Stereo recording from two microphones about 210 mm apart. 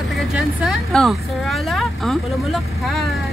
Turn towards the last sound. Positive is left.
turn(degrees=0)  # may be behind; listen again after turning